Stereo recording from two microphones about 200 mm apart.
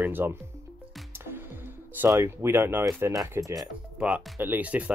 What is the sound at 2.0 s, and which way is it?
Speech, 15° right (ahead or behind).